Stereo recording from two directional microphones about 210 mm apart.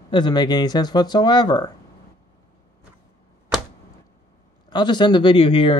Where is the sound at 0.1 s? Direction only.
20° left (ahead or behind).